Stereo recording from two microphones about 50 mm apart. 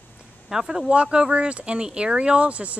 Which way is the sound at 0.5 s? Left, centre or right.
Centre.